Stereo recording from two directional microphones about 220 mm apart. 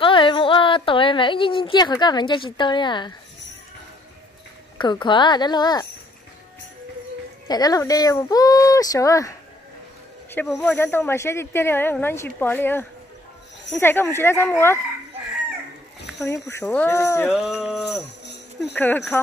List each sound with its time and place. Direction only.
0.0 s speech: 25° left (ahead or behind)
4.7 s speech: 20° left (ahead or behind)
7.4 s speech: 15° left (ahead or behind)
10.3 s speech: 5° left (ahead or behind)
16.1 s a sound: 5° right (ahead or behind)
16.4 s speech: 10° left (ahead or behind)
17.3 s speech: centre (ahead or behind)